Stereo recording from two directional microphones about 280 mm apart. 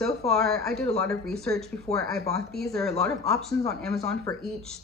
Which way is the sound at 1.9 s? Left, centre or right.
Left.